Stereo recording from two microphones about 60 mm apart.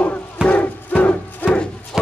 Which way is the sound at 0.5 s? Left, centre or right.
Left.